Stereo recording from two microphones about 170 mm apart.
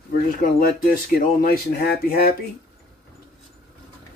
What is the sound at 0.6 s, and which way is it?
Speech, 60° left (ahead or behind).